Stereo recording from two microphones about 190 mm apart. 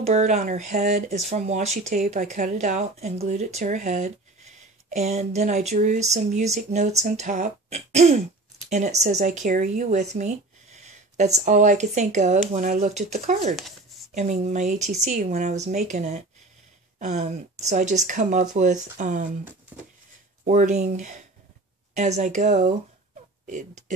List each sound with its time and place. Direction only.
0.0 s speech: 35° right (ahead or behind)
13.6 s a sound: centre (ahead or behind)
14.1 s speech: 35° right (ahead or behind)
20.4 s speech: 40° right (ahead or behind)